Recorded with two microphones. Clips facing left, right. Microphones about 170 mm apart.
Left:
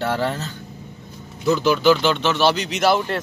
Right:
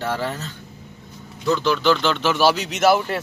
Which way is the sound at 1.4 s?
5° left (ahead or behind).